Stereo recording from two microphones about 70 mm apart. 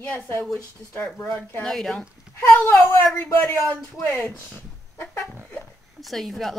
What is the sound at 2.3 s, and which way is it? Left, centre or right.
A child's voice, left.